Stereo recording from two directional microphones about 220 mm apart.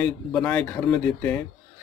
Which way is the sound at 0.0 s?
5° left (ahead or behind).